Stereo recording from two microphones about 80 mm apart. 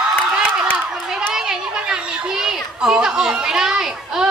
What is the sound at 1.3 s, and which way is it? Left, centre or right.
A child's voice, centre.